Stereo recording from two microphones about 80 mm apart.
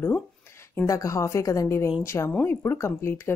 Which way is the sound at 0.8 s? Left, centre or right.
Left.